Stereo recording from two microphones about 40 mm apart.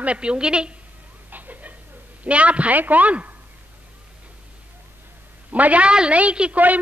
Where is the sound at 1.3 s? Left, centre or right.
Right.